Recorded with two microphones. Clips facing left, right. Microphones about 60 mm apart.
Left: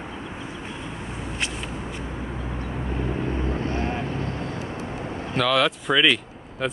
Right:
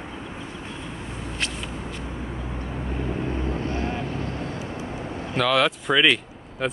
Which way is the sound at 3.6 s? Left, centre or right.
Left.